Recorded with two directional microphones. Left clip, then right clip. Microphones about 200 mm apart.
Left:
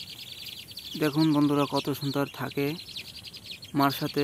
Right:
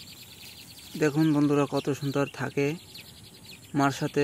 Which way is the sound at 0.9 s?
Centre (ahead or behind).